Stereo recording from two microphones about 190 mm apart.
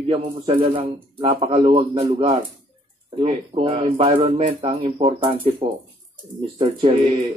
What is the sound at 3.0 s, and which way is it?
Speech, 30° right (ahead or behind).